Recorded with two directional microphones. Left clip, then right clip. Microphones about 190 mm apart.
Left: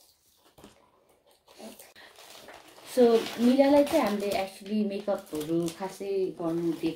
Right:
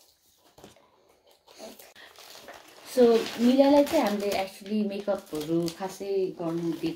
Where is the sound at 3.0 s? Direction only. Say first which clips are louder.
Right 1 dB; 15° right (ahead or behind).